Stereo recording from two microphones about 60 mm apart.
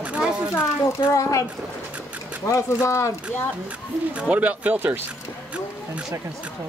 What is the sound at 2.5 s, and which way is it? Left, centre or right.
Speech, left.